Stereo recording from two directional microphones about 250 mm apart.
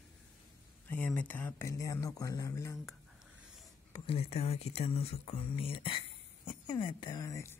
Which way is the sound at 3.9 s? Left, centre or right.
Left.